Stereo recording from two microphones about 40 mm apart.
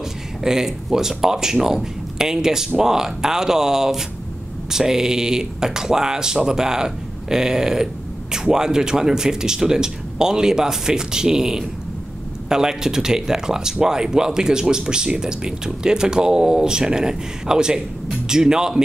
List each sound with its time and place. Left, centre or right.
0.4 s speech: centre